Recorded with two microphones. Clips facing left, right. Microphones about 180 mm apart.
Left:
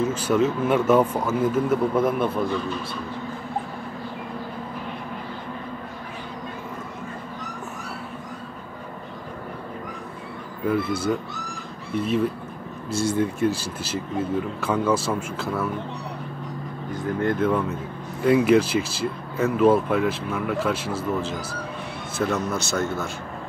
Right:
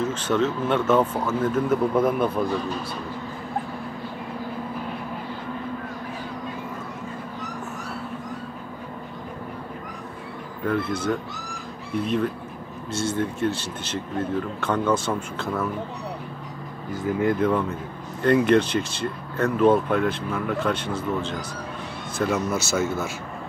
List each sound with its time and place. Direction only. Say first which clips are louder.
0.1 s speech: left 2 dB; 10° left (ahead or behind)
10.6 s speech: left 1 dB; 5° left (ahead or behind)
12.9 s speech: left 3 dB; 15° left (ahead or behind)
16.9 s speech: right 2 dB; 5° right (ahead or behind)